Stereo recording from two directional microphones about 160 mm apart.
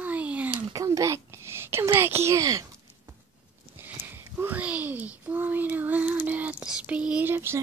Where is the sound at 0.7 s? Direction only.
20° right (ahead or behind).